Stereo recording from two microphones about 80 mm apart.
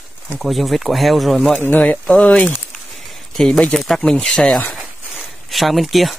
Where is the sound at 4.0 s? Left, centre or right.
Centre.